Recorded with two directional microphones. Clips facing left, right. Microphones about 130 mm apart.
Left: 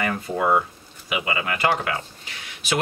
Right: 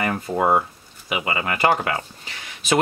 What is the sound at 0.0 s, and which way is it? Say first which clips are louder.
Speech: right 2 dB; 35° right (ahead or behind).